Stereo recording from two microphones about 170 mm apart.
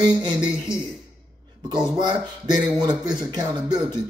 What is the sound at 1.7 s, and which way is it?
A man's voice, 25° right (ahead or behind).